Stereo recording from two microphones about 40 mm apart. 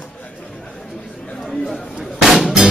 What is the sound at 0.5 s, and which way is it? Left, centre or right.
Chatter, left.